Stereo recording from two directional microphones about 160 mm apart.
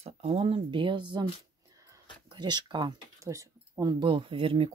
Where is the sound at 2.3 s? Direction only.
25° right (ahead or behind).